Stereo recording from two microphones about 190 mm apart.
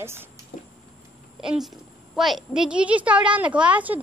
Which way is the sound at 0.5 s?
55° left (ahead or behind).